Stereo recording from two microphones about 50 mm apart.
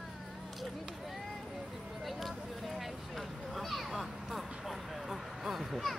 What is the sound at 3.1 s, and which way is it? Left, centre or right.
Vehicle, centre.